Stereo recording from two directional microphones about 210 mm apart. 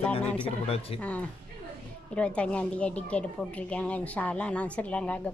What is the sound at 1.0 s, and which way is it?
Speech, 5° left (ahead or behind).